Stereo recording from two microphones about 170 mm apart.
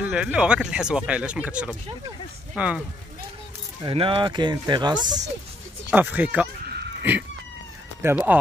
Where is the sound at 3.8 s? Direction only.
30° right (ahead or behind).